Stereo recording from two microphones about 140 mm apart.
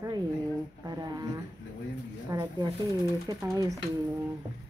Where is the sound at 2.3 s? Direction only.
25° right (ahead or behind).